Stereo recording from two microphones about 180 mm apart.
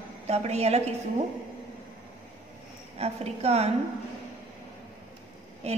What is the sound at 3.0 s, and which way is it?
Speech, 35° right (ahead or behind).